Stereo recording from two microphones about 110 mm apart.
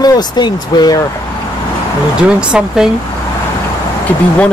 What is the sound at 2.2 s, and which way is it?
Speech, 10° right (ahead or behind).